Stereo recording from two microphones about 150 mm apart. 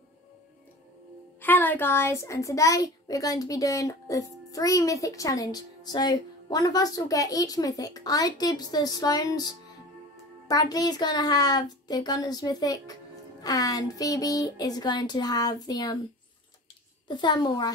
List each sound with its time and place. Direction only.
1.4 s a child's voice: 10° left (ahead or behind)
17.1 s a child's voice: 30° left (ahead or behind)